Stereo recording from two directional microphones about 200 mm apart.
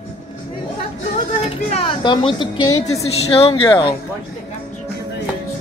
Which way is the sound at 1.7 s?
25° left (ahead or behind).